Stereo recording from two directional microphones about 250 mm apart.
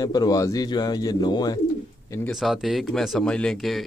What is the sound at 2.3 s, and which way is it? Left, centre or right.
Speech, centre.